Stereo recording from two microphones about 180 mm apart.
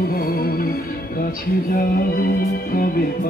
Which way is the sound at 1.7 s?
55° left (ahead or behind).